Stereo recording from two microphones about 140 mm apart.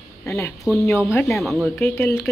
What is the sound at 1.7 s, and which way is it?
Speech, 15° left (ahead or behind).